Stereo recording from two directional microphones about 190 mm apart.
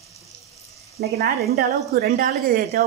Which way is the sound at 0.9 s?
55° right (ahead or behind).